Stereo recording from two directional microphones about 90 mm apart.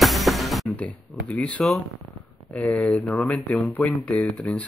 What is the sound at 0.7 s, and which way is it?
Speech, 15° left (ahead or behind).